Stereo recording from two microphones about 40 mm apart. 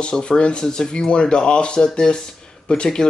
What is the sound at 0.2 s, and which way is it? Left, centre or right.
Speech, left.